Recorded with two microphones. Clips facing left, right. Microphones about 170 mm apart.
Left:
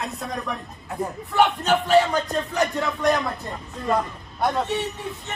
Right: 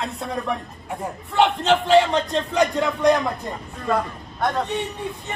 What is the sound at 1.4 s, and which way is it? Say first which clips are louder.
A man's voice: right 1 dB; 20° right (ahead or behind).